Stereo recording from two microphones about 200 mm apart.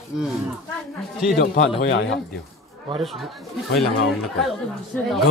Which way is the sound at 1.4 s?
60° left (ahead or behind).